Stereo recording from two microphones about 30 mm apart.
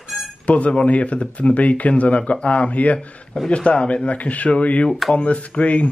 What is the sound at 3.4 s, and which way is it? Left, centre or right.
Speech, left.